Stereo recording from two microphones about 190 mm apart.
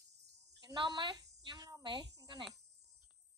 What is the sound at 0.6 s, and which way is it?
Speech, 25° right (ahead or behind).